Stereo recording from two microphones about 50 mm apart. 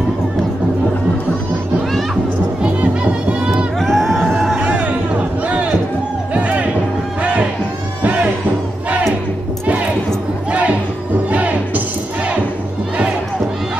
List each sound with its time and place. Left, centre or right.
2.8 s music: right
3.8 s a sound: centre
4.6 s music: right
5.5 s run: right
6.3 s music: right
8.0 s music: right
10.5 s music: right